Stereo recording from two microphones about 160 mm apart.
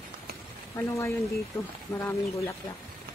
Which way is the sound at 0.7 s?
20° left (ahead or behind).